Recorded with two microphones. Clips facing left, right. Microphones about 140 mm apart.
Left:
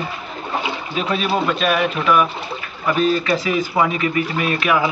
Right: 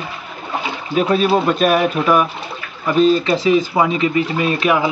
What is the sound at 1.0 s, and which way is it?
Speech, 35° right (ahead or behind).